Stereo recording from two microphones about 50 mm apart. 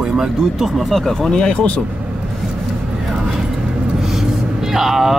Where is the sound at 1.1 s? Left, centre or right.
Centre.